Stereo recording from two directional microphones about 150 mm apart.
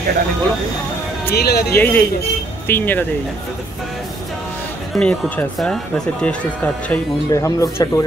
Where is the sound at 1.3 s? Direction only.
90° left.